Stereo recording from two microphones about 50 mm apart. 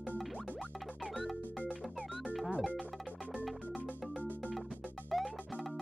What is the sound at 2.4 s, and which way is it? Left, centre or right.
Music, right.